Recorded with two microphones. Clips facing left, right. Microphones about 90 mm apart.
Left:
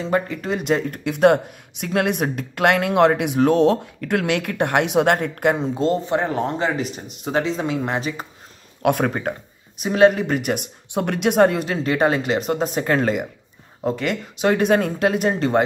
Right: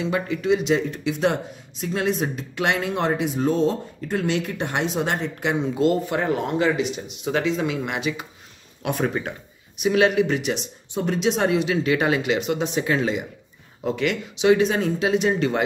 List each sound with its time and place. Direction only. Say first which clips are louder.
0.0 s speech: left 2 dB; 40° left (ahead or behind)
5.8 s speech: left 1 dB; 30° left (ahead or behind)
8.8 s speech: left 5 dB; 55° left (ahead or behind)
9.8 s speech: left 3 dB; 40° left (ahead or behind)
13.8 s speech: left 1 dB; 40° left (ahead or behind)